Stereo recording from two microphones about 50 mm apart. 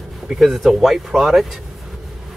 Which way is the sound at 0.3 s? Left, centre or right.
Centre.